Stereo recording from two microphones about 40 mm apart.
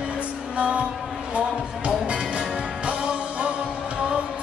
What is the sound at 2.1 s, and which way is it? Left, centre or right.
Music, right.